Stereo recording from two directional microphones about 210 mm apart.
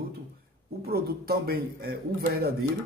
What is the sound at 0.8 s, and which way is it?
Speech, 45° right (ahead or behind).